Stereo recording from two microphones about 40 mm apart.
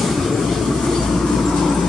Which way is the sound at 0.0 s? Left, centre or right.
Centre.